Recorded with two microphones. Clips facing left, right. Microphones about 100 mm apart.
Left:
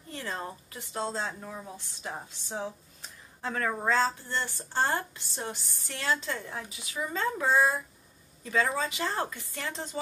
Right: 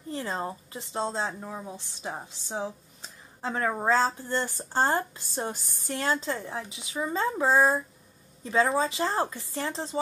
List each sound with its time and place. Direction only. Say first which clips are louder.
0.1 s a woman's voice: right 5 dB; 30° right (ahead or behind)
1.4 s speech: right 3 dB; 10° right (ahead or behind)
3.0 s a sound: right 3 dB; 30° right (ahead or behind)
3.6 s speech: right 3 dB; 15° right (ahead or behind)
3.9 s a woman's voice: right 3 dB; 40° right (ahead or behind)
6.2 s a woman's voice: right 4 dB; 30° right (ahead or behind)